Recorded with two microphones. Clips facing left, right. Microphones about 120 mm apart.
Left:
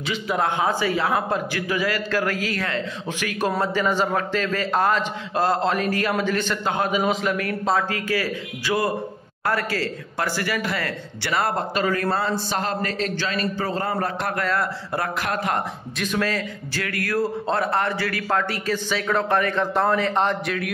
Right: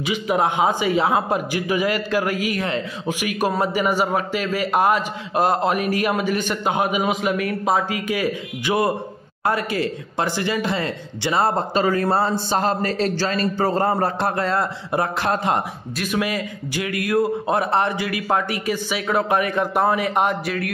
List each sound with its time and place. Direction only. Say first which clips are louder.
0.0 s a man's voice: right 3 dB; 15° right (ahead or behind)
16.0 s a man's voice: right 1 dB; 10° right (ahead or behind)